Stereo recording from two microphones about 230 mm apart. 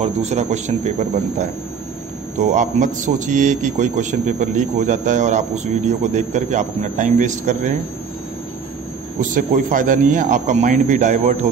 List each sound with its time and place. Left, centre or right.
0.0 s speech: right
2.5 s a man's voice: right
9.2 s a man's voice: right